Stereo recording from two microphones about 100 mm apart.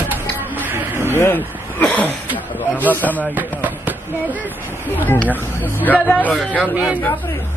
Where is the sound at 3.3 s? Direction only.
15° right (ahead or behind).